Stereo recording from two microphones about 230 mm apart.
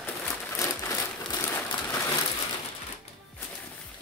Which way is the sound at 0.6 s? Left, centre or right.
Centre.